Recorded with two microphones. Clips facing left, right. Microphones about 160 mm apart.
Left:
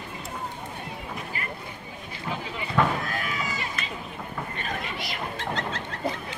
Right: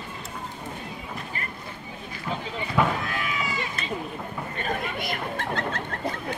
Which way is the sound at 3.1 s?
40° left (ahead or behind).